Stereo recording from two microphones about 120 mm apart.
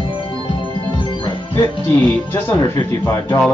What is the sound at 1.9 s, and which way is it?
Speech, 15° left (ahead or behind).